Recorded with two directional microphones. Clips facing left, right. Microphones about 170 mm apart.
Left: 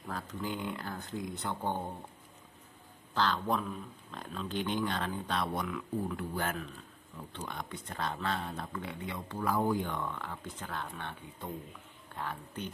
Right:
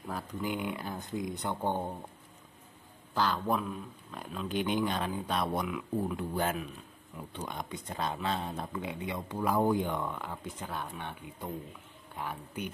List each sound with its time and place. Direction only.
0.1 s speech: 10° right (ahead or behind)
3.2 s speech: 5° right (ahead or behind)